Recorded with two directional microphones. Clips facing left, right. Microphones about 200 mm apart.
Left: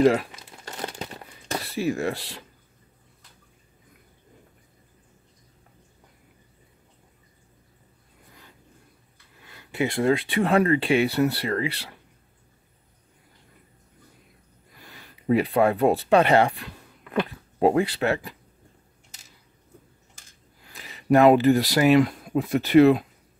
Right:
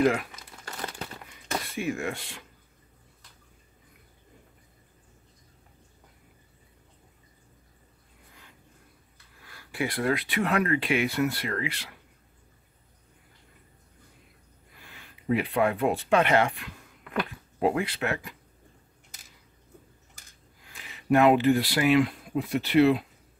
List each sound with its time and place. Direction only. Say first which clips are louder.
0.0 s crumpling: left 5 dB; 30° left (ahead or behind)
9.4 s speech: left 5 dB; 20° left (ahead or behind)
14.8 s speech: left 4 dB; 40° left (ahead or behind)
20.6 s speech: left 4 dB; 35° left (ahead or behind)